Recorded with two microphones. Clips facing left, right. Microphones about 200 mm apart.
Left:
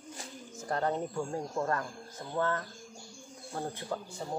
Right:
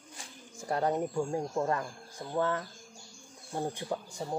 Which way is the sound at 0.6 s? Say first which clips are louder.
Right 2 dB; 10° right (ahead or behind).